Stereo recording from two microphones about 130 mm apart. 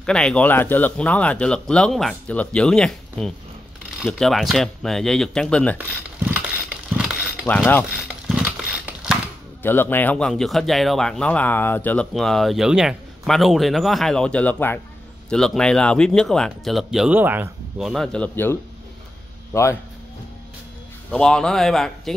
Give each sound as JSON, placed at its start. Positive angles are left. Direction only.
{"t": 0.0, "sound": "a man's voice", "side_deg": 5}
{"t": 5.8, "sound": "a sound", "side_deg": -10}
{"t": 7.4, "sound": "speech", "side_deg": 15}
{"t": 8.8, "sound": "a sound", "side_deg": -10}
{"t": 9.6, "sound": "speech", "side_deg": 15}
{"t": 12.1, "sound": "a man's voice", "side_deg": 0}
{"t": 17.1, "sound": "speech", "side_deg": -15}
{"t": 17.7, "sound": "speech", "side_deg": 0}
{"t": 21.1, "sound": "a man's voice", "side_deg": 5}